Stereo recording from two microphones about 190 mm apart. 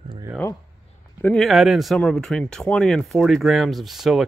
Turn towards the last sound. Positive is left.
turn(degrees=0)  # may be behind; listen again after turning